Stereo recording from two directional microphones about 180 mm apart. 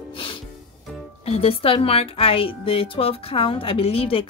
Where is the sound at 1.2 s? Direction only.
35° left (ahead or behind).